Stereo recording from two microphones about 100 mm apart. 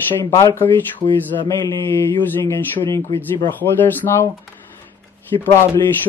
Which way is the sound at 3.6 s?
20° left (ahead or behind).